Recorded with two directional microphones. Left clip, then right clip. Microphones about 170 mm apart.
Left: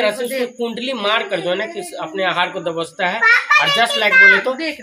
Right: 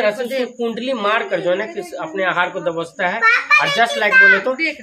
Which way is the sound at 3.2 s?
50° left (ahead or behind).